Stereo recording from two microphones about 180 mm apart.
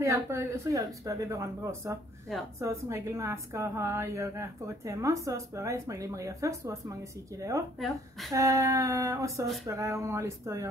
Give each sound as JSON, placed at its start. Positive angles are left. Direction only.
{"t": 0.0, "sound": "a woman's voice", "side_deg": -15}
{"t": 7.8, "sound": "a woman's voice", "side_deg": 0}
{"t": 8.3, "sound": "a woman's voice", "side_deg": -20}